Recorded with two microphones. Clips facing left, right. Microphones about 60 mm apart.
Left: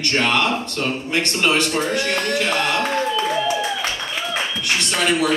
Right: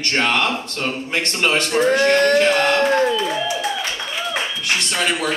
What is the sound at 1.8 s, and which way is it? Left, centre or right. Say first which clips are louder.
Speech: right 7 dB; right.